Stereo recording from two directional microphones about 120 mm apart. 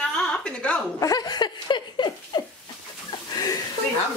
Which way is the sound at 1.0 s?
30° left (ahead or behind).